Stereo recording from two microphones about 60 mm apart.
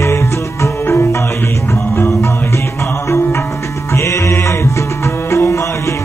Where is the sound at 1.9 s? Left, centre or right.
Left.